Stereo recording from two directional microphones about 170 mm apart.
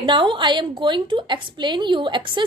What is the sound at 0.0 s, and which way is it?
A woman's voice, 30° right (ahead or behind).